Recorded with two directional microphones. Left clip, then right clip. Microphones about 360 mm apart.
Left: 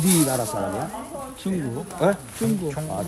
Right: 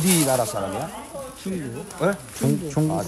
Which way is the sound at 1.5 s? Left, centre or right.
Centre.